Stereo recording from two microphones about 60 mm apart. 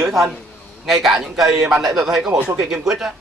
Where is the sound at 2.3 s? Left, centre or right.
Right.